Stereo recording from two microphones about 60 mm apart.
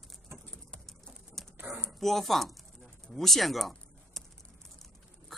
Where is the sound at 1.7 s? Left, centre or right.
Centre.